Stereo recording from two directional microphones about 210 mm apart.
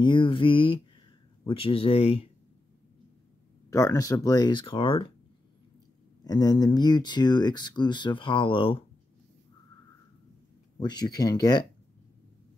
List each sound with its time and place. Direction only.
0.0 s speech: 25° left (ahead or behind)
3.7 s speech: 15° left (ahead or behind)
6.2 s speech: 15° left (ahead or behind)
10.8 s speech: 20° left (ahead or behind)